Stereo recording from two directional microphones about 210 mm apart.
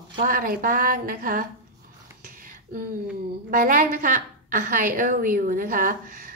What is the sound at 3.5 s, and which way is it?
A woman's voice, 40° right (ahead or behind).